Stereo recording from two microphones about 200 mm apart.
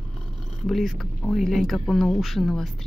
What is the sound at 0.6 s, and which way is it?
Speech, centre (ahead or behind).